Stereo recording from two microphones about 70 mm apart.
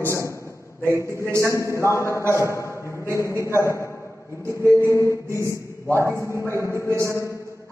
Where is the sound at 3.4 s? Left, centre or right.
Left.